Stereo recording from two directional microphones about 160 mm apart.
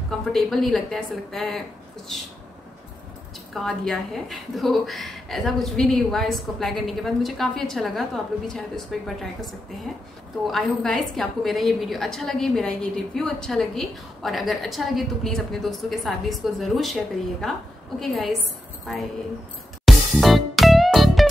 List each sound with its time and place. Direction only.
0.3 s a woman's voice: centre (ahead or behind)
3.5 s a woman's voice: centre (ahead or behind)
19.8 s music: centre (ahead or behind)